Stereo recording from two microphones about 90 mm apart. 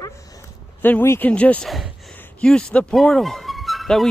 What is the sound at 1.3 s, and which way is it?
Speech, 15° left (ahead or behind).